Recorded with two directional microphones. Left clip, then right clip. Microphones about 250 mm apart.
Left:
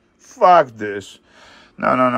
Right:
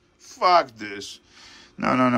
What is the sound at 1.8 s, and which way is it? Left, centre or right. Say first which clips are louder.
Speech: left 5 dB; centre.